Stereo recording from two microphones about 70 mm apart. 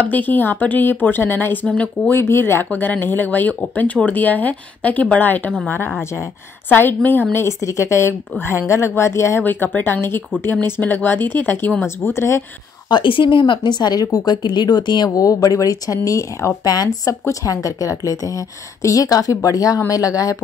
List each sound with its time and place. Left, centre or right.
0.0 s speech: left
2.1 s speech: left
6.7 s speech: left
7.3 s speech: left
9.4 s speech: left
12.9 s speech: left
15.1 s speech: left